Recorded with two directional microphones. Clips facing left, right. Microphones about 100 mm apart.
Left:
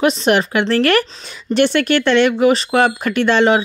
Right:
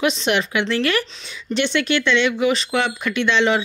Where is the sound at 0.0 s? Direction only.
40° left (ahead or behind).